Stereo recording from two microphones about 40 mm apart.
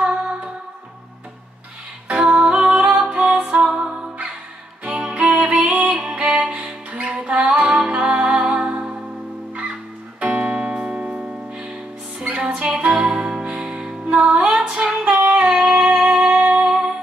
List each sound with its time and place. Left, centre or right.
0.0 s music: right
2.0 s music: right
2.8 s music: centre
4.8 s music: right
10.2 s music: right
15.4 s a sound: centre
16.0 s music: centre
16.3 s music: right
16.6 s music: right